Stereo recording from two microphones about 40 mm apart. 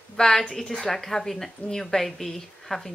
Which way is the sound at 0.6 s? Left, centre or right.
Left.